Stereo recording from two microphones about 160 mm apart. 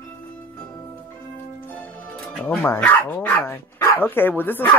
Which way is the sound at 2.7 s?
10° left (ahead or behind).